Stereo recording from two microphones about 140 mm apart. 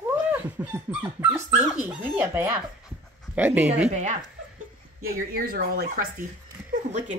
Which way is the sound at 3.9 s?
55° right (ahead or behind).